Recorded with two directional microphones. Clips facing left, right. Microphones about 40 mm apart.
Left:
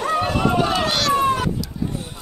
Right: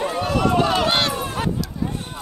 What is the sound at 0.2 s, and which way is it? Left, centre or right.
Run, centre.